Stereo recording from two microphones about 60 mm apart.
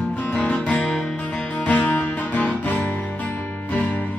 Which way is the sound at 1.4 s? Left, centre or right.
Left.